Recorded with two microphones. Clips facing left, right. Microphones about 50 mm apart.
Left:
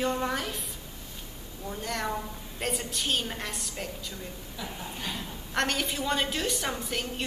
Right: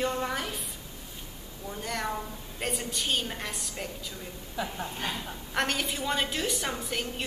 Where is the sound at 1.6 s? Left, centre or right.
Centre.